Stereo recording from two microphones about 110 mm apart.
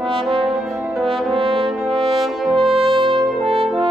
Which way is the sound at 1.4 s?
55° right (ahead or behind).